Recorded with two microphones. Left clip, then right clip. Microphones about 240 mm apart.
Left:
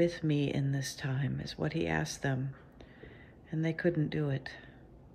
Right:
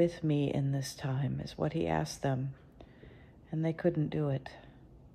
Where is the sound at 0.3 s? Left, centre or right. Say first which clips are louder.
Even; right.